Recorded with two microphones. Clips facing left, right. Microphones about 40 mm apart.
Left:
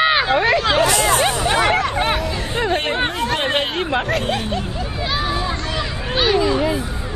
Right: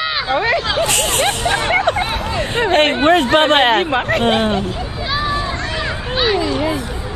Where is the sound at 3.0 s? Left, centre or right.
Right.